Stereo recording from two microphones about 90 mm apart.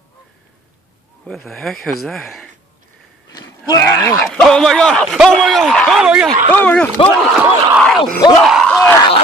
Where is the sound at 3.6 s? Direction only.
35° left (ahead or behind).